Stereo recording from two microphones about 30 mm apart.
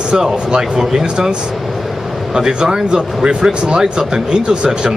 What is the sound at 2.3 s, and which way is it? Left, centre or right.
Speech, right.